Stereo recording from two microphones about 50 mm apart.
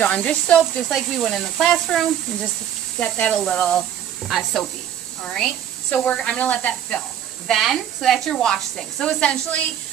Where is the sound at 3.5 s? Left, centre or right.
Left.